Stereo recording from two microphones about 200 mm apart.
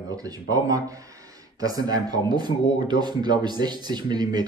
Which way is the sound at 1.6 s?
20° right (ahead or behind).